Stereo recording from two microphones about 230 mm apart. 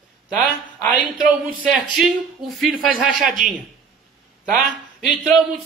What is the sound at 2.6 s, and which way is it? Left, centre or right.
Speech, centre.